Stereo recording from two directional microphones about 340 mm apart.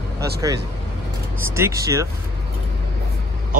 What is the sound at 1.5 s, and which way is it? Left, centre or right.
Speech, centre.